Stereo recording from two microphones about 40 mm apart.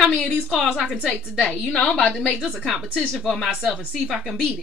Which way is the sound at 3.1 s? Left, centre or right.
Centre.